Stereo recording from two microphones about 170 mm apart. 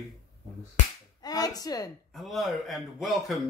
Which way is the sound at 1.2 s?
20° left (ahead or behind).